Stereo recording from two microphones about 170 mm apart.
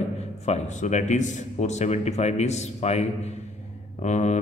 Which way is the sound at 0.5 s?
45° left (ahead or behind).